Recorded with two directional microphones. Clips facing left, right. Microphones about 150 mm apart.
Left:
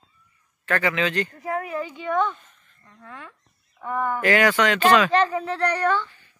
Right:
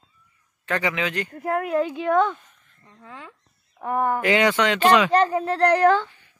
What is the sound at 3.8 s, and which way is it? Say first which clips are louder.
Speech: right 3 dB; 45° right (ahead or behind).